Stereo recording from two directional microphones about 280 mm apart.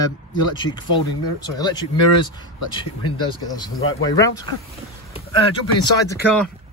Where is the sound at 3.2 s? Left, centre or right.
Centre.